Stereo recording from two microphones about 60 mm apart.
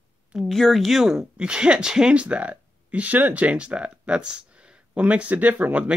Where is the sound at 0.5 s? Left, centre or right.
Centre.